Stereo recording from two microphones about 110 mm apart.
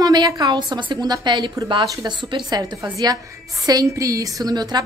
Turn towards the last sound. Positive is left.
turn(degrees=-40)  # may be behind; listen again after turning